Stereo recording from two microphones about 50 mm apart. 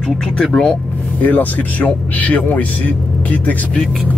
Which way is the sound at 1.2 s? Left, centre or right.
Left.